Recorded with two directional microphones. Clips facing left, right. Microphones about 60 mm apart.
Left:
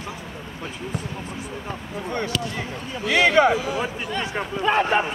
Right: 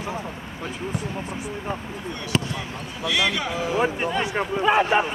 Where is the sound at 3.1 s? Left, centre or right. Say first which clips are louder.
Left 8 dB; left.